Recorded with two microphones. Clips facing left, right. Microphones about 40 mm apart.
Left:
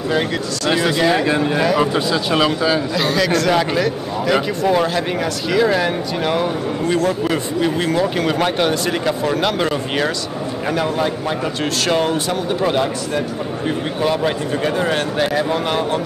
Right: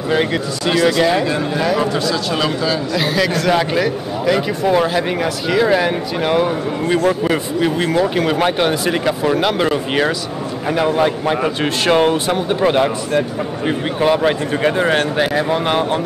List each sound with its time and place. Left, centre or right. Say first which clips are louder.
0.1 s speech: right 3 dB; centre
0.8 s speech: right 2 dB; centre
1.2 s speech: left 1 dB; centre
1.6 s speech: right 1 dB; centre
2.0 s speech: left 1 dB; centre
2.9 s a man's voice: even; centre